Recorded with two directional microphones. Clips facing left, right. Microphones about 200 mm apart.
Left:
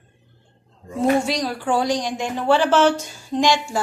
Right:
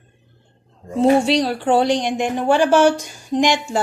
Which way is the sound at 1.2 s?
30° right (ahead or behind).